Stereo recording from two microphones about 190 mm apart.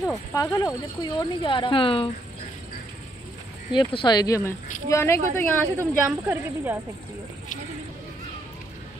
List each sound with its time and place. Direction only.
0.3 s a woman's voice: 15° left (ahead or behind)
3.7 s a woman's voice: 25° left (ahead or behind)
5.8 s a woman's voice: 15° right (ahead or behind)